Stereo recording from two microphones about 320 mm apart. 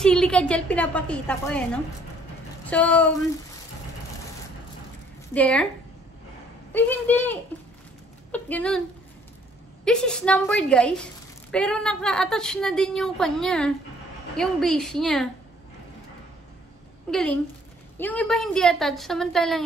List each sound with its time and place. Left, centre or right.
0.0 s a woman's voice: centre
5.3 s a woman's voice: centre
6.7 s a woman's voice: centre
9.8 s a woman's voice: centre
17.1 s a woman's voice: centre